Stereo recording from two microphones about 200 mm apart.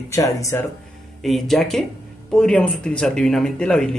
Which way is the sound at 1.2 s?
Centre (ahead or behind).